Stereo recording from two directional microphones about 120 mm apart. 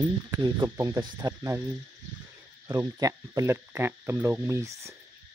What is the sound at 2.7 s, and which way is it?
Speech, 30° right (ahead or behind).